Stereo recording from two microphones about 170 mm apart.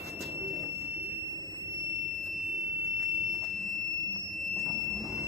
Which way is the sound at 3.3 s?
Centre (ahead or behind).